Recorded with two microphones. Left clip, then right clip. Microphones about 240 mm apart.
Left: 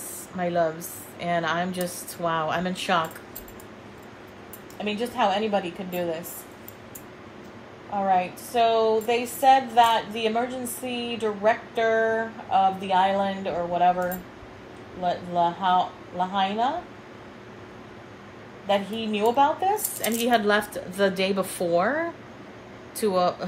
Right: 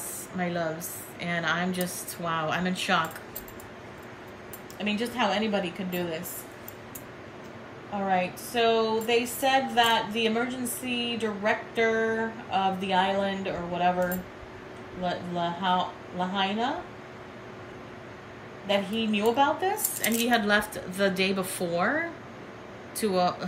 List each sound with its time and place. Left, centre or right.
0.4 s a woman's voice: centre
4.8 s a woman's voice: centre
8.1 s a woman's voice: centre
15.0 s a woman's voice: centre
18.7 s a woman's voice: centre
22.9 s a woman's voice: centre